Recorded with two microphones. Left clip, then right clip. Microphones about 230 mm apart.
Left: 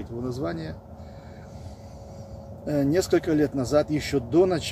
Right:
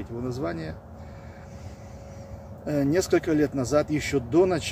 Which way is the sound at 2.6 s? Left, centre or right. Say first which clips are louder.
Left 1 dB; centre.